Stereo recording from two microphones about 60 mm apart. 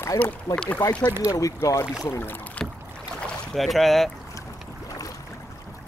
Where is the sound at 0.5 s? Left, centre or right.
Left.